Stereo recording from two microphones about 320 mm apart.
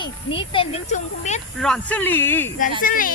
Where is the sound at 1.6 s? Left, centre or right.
Centre.